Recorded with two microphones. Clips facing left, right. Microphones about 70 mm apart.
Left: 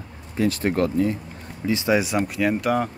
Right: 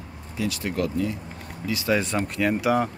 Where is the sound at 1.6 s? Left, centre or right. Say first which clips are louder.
Left 3 dB; left.